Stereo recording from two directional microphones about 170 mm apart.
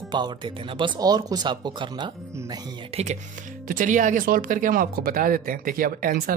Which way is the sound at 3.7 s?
50° right (ahead or behind).